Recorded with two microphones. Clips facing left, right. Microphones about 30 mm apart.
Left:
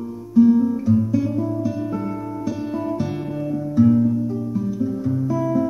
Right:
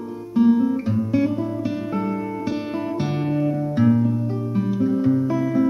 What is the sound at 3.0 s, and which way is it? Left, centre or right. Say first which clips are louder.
Music: right 3 dB; right.